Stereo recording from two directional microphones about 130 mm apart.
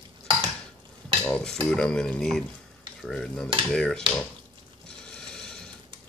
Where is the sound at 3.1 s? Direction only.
5° left (ahead or behind).